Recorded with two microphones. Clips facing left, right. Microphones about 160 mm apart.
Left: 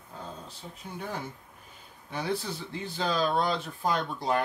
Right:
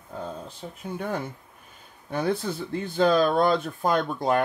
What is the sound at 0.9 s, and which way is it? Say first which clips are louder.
Speech: right 6 dB; 50° right (ahead or behind).